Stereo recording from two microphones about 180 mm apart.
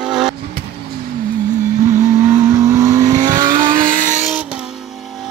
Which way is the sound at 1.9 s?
15° right (ahead or behind).